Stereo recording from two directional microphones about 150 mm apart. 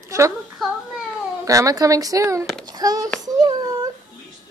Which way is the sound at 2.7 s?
25° right (ahead or behind).